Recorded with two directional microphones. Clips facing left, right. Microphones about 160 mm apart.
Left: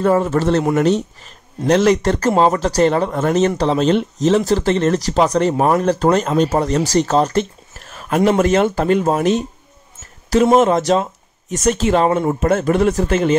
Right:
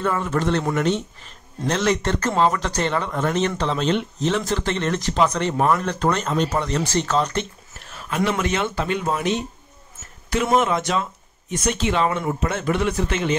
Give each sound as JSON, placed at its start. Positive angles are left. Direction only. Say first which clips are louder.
{"t": 0.0, "sound": "speech", "louder": "left 7 dB", "side_deg": 35}